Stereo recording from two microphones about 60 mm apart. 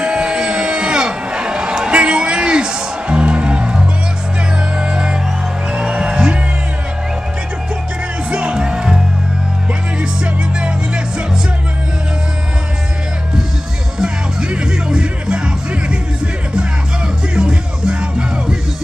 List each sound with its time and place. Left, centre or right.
0.0 s a sound: centre
4.7 s music: centre
8.3 s music: centre
13.9 s music: centre
17.4 s music: centre